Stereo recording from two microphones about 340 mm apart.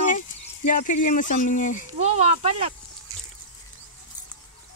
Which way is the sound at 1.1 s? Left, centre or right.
Left.